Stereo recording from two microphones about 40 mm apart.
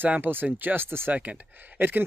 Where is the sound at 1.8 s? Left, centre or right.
Right.